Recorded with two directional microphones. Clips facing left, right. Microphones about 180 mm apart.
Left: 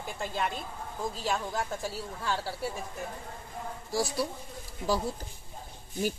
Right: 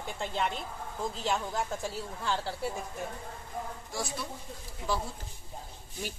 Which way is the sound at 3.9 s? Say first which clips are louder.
Left 7 dB; 35° left (ahead or behind).